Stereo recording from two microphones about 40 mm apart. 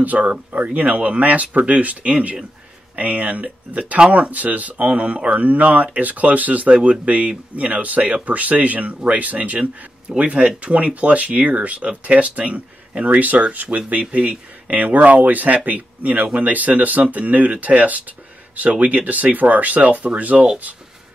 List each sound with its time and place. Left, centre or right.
0.0 s speech: right
6.7 s speech: right